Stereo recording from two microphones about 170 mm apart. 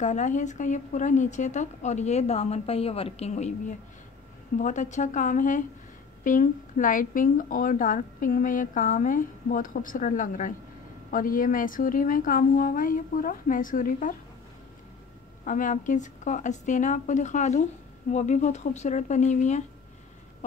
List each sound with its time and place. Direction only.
0.0 s a woman's voice: 45° left (ahead or behind)
15.4 s a woman's voice: 50° left (ahead or behind)